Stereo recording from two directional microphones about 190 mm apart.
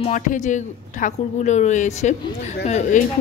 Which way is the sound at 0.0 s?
40° left (ahead or behind).